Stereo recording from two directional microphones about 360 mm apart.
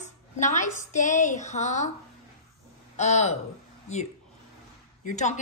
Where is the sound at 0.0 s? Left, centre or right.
Centre.